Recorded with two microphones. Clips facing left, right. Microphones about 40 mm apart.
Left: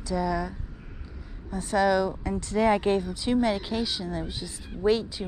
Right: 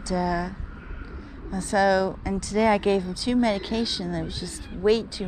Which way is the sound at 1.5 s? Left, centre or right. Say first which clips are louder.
Right 2 dB; centre.